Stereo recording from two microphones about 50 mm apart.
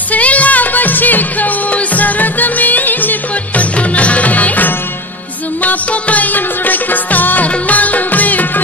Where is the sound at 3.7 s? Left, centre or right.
Left.